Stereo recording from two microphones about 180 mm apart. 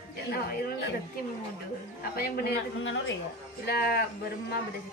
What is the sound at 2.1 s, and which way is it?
Speech, 60° left (ahead or behind).